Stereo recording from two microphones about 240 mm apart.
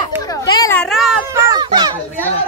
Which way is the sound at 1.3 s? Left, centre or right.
Centre.